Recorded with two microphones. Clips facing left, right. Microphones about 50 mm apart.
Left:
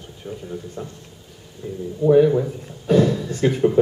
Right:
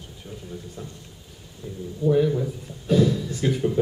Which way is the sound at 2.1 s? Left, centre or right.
Left.